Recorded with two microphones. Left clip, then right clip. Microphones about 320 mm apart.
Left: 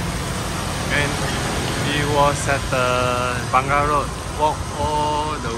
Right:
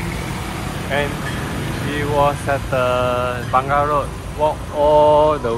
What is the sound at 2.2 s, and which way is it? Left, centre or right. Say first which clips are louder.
Speech: right 2 dB; centre.